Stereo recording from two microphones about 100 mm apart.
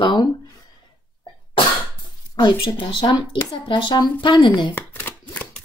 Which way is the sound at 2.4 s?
55° left (ahead or behind).